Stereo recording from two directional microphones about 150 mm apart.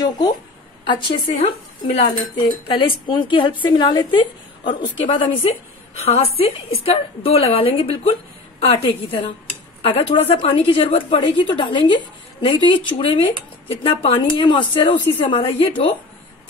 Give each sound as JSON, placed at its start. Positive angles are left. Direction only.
{"t": 0.0, "sound": "a sound", "side_deg": 30}
{"t": 0.8, "sound": "a woman's voice", "side_deg": 35}
{"t": 2.7, "sound": "a woman's voice", "side_deg": 30}